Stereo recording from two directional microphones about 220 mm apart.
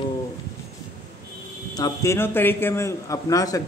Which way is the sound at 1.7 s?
15° left (ahead or behind).